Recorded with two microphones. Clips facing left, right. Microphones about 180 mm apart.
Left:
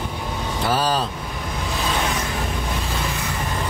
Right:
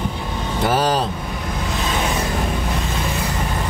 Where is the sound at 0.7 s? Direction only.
20° right (ahead or behind).